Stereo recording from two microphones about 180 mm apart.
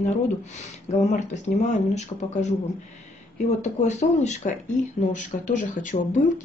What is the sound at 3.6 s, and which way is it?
Speech, 40° left (ahead or behind).